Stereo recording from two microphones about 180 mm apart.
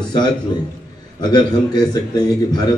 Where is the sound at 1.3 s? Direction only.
25° left (ahead or behind).